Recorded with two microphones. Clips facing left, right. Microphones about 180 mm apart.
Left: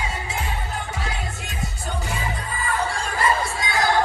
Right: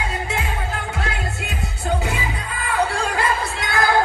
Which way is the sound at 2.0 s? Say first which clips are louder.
Right 3 dB; 65° right (ahead or behind).